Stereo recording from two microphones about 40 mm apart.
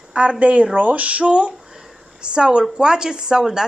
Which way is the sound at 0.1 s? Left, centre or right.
Right.